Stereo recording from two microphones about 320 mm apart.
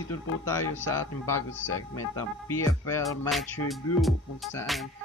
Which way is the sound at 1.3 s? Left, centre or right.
Left.